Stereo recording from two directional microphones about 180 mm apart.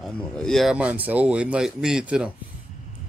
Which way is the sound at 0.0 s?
Centre (ahead or behind).